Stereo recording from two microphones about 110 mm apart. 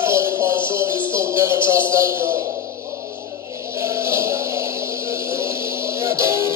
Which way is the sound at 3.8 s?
25° right (ahead or behind).